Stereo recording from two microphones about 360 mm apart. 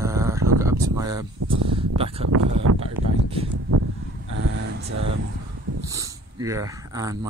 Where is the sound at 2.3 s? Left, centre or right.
Right.